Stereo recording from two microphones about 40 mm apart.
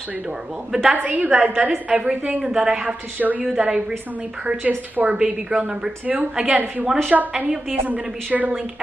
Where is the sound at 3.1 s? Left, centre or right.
Right.